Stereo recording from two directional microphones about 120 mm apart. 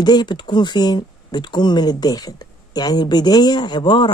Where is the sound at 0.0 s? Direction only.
35° left (ahead or behind).